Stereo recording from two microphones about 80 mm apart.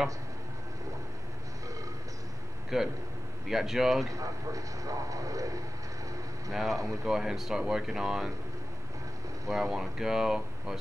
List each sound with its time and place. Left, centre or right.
2.7 s speech: centre
4.1 s a man's voice: right
6.5 s speech: centre
9.5 s speech: centre